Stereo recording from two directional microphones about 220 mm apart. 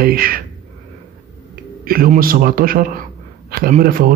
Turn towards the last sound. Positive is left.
turn(degrees=-40)  # may be behind; listen again after turning